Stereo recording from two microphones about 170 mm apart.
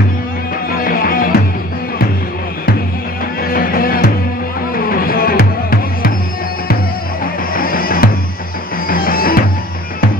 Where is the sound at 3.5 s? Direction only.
60° left (ahead or behind).